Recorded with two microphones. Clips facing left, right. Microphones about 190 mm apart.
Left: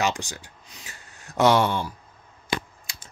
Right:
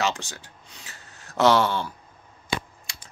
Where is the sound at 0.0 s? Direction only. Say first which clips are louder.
Left 1 dB; 15° left (ahead or behind).